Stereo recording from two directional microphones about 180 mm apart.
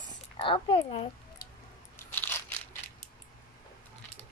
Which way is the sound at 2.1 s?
10° left (ahead or behind).